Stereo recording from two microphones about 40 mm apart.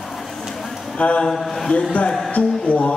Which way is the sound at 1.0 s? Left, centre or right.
Left.